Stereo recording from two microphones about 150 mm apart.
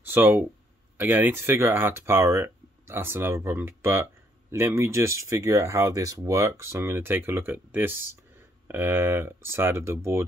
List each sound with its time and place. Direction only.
0.0 s speech: 15° right (ahead or behind)